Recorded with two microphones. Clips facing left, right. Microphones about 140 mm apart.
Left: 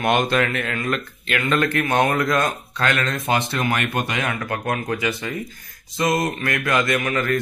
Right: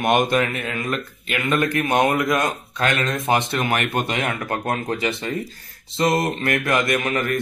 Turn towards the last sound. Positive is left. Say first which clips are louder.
# even
turn(degrees=-20)  # may be behind; listen again after turning